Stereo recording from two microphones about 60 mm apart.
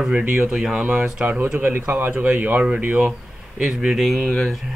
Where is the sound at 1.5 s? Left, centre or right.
Right.